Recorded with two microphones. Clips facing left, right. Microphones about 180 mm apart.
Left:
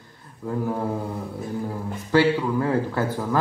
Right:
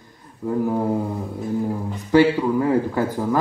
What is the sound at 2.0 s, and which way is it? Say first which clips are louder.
A man's voice: right 4 dB; 15° right (ahead or behind).